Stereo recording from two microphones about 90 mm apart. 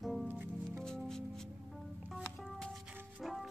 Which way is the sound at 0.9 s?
5° left (ahead or behind).